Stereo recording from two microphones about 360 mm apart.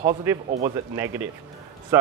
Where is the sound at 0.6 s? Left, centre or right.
Centre.